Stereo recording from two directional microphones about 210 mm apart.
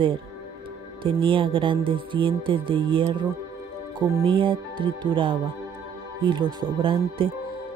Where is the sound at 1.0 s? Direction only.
25° right (ahead or behind).